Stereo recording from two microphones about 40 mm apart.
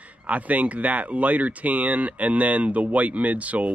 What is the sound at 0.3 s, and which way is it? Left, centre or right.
Speech, right.